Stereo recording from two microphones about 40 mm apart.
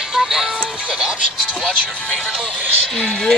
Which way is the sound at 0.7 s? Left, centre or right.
Right.